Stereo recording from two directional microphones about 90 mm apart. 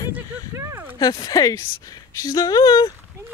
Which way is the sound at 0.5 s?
30° right (ahead or behind).